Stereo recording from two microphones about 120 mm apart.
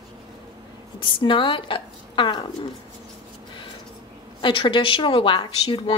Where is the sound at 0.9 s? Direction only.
45° left (ahead or behind).